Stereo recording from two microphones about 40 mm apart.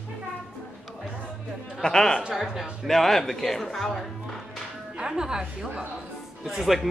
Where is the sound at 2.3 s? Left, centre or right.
Centre.